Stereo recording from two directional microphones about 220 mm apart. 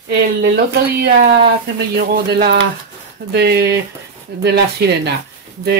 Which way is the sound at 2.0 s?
50° right (ahead or behind).